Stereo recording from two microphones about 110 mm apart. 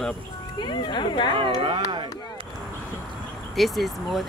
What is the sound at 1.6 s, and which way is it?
Speech, 40° right (ahead or behind).